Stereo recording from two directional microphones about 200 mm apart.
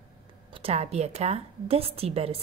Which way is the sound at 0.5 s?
30° right (ahead or behind).